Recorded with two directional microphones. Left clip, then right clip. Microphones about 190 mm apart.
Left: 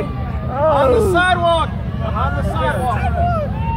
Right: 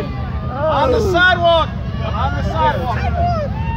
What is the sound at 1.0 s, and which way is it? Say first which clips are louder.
Speech: right 1 dB; 30° right (ahead or behind).